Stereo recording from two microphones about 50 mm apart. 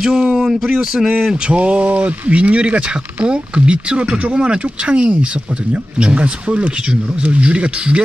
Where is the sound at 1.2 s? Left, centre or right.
Centre.